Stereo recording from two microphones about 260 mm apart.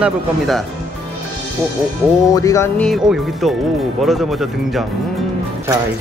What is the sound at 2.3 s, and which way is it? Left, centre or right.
Speech, centre.